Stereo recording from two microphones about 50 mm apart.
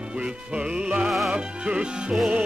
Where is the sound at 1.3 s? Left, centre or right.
Centre.